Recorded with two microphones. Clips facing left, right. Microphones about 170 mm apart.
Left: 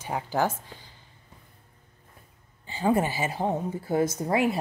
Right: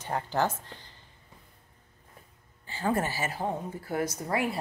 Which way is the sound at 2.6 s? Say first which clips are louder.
Left 5 dB; 15° left (ahead or behind).